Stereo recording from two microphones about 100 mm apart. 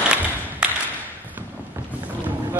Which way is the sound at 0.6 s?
10° right (ahead or behind).